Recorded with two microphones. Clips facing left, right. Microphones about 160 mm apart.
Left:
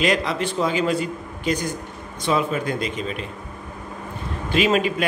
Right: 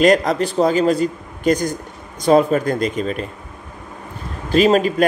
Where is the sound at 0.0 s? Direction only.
45° right (ahead or behind).